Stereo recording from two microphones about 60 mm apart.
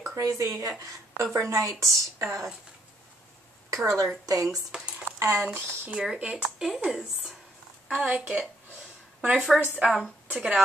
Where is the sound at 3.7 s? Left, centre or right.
Right.